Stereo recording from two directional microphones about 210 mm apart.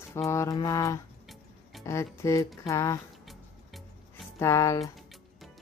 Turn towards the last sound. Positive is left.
turn(degrees=15)  # may be behind; listen again after turning